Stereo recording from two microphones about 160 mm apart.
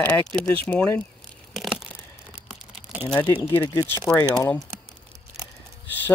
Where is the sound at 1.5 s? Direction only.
Centre (ahead or behind).